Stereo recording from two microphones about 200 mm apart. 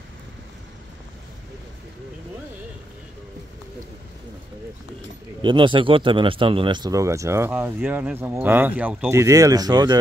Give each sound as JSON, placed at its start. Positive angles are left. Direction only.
{"t": 5.4, "sound": "speech", "side_deg": -25}